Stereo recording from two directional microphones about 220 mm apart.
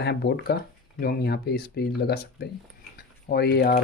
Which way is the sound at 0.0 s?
50° left (ahead or behind).